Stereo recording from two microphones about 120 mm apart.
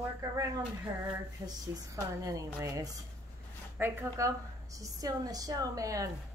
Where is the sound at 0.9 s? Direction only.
40° right (ahead or behind).